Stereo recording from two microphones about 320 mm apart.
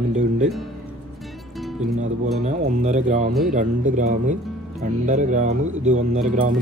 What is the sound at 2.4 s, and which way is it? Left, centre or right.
Speech, right.